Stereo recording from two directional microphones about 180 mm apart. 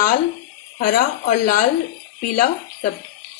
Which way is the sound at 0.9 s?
50° left (ahead or behind).